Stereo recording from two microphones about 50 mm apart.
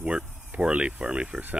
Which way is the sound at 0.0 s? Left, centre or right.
Right.